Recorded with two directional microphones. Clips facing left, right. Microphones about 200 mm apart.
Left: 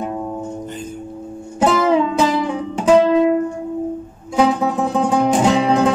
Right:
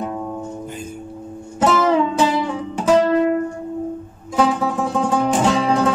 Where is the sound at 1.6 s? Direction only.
15° left (ahead or behind).